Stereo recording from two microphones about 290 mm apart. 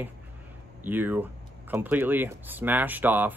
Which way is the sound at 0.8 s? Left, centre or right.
Centre.